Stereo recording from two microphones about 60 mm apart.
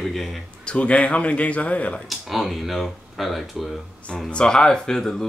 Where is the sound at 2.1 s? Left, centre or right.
Centre.